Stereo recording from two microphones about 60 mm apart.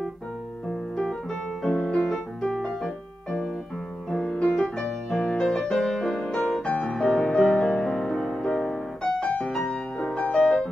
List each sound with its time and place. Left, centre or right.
0.7 s piano: centre
4.1 s music: centre